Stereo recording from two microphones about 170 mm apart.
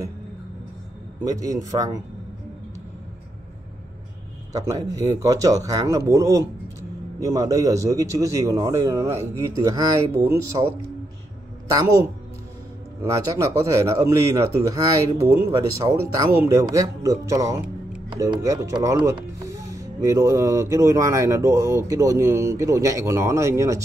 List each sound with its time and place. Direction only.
1.2 s a man's voice: 20° right (ahead or behind)
4.5 s a man's voice: 20° right (ahead or behind)
11.7 s a man's voice: 20° right (ahead or behind)
13.0 s a man's voice: 20° right (ahead or behind)